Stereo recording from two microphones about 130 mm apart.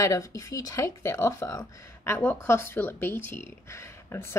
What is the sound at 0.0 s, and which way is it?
Speech, 25° left (ahead or behind).